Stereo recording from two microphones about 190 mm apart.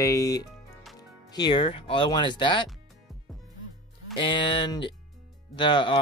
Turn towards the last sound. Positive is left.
turn(degrees=25)  # may be behind; listen again after turning